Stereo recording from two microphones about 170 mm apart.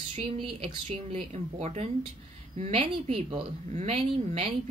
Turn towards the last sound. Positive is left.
turn(degrees=-35)  # may be behind; listen again after turning